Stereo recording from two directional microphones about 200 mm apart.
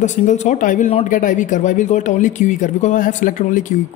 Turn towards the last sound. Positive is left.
turn(degrees=40)  # may be behind; listen again after turning